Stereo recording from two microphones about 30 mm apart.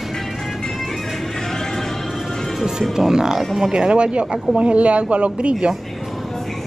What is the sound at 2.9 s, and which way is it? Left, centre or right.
Speech, right.